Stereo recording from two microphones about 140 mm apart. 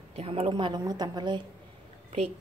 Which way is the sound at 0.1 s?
45° right (ahead or behind).